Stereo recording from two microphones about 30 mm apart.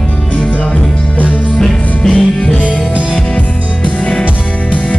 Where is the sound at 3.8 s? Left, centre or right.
Left.